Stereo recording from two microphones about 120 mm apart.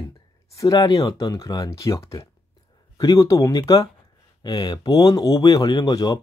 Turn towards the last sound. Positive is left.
turn(degrees=35)  # may be behind; listen again after turning